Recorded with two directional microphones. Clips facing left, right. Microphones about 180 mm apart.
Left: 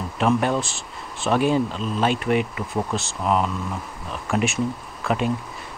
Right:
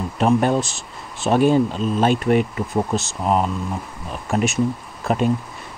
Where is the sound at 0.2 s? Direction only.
35° right (ahead or behind).